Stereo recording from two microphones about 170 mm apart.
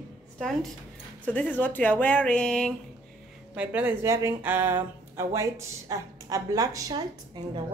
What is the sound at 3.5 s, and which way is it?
Speech, 10° right (ahead or behind).